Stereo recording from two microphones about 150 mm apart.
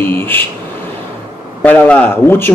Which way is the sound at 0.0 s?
15° left (ahead or behind).